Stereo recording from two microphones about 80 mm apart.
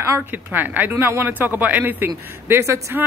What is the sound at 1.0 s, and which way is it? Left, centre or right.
Speech, right.